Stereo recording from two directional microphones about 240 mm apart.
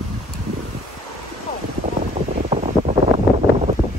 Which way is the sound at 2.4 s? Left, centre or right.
Right.